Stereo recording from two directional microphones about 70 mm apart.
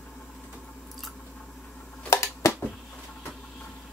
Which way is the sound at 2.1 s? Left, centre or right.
Left.